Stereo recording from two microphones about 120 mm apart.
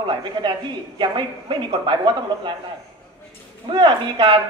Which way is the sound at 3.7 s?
45° right (ahead or behind).